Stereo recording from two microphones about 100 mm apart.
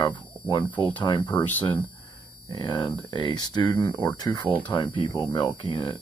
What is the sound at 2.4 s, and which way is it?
Speech, 50° left (ahead or behind).